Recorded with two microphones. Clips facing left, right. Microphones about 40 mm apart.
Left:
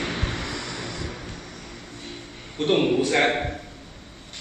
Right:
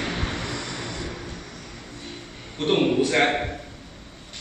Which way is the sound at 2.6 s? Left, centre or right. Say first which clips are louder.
Even; centre.